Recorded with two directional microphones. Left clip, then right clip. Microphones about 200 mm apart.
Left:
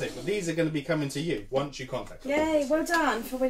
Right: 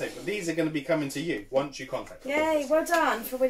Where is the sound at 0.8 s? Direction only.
20° left (ahead or behind).